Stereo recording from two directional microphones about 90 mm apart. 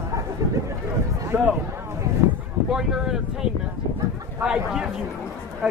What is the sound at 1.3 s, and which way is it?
Speech, 20° right (ahead or behind).